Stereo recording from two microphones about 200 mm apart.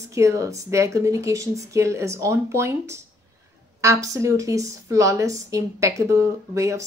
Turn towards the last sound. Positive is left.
turn(degrees=-15)  # may be behind; listen again after turning